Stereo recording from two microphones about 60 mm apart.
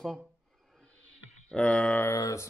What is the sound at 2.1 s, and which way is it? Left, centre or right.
Mantra, left.